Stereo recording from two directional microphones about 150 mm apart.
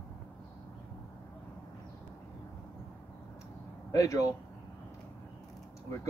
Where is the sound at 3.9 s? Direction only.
20° left (ahead or behind).